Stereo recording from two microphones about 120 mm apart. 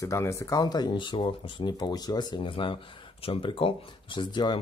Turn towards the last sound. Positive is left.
turn(degrees=40)  # may be behind; listen again after turning